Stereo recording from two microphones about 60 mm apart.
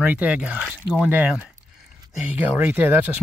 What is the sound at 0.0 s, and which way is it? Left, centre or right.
Speech, right.